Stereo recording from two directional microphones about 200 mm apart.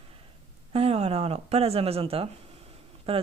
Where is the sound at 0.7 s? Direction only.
30° right (ahead or behind).